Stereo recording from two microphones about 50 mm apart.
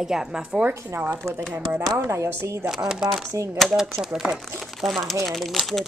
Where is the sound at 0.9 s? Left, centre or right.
Right.